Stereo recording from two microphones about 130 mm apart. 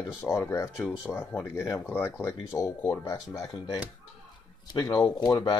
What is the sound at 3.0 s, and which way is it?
Speech, 30° left (ahead or behind).